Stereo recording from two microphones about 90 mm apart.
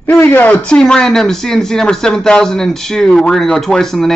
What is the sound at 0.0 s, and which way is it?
Speech, 25° left (ahead or behind).